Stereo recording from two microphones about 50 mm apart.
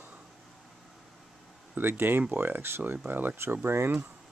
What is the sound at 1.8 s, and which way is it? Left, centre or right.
Speech, right.